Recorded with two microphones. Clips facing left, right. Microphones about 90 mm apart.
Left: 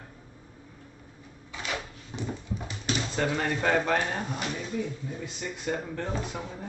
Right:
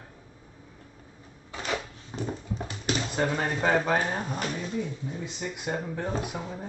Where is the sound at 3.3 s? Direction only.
20° right (ahead or behind).